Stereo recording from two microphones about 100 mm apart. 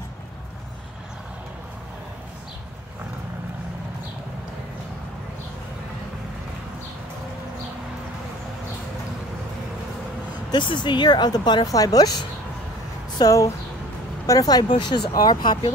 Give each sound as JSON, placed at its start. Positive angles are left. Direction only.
{"t": 10.5, "sound": "speech", "side_deg": 50}